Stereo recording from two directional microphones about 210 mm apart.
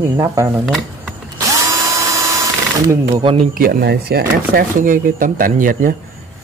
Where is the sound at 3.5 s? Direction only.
45° right (ahead or behind).